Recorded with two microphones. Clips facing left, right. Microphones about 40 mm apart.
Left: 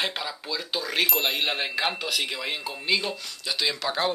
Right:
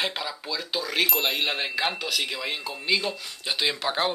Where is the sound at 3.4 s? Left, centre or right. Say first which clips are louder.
Right 1 dB; right.